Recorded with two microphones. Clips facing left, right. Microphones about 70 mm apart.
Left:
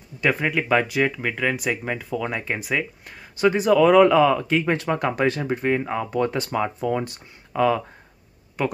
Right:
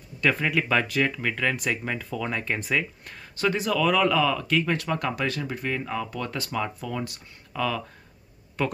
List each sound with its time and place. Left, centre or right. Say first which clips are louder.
0.2 s speech: left 2 dB; centre
8.6 s speech: left 3 dB; centre